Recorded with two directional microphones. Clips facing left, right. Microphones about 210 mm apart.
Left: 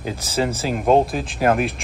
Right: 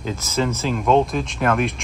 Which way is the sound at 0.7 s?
45° left (ahead or behind).